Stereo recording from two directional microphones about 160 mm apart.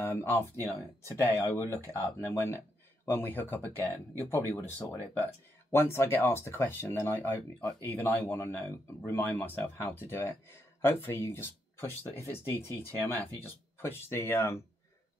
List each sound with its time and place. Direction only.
0.0 s speech: 15° left (ahead or behind)